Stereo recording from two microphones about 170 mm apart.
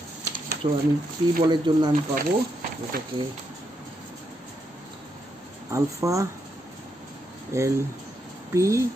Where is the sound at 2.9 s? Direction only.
60° right (ahead or behind).